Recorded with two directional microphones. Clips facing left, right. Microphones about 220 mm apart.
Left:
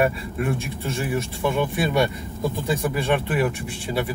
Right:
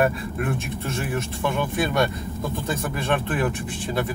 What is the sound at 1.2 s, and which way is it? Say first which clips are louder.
Speech: left 3 dB; 10° left (ahead or behind).